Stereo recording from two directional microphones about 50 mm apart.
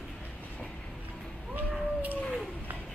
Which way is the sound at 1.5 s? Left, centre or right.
Right.